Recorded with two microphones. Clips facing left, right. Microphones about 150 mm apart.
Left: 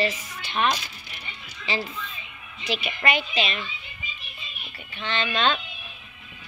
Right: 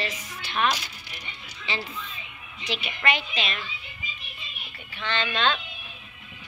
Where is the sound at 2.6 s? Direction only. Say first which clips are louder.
Left 2 dB; 10° left (ahead or behind).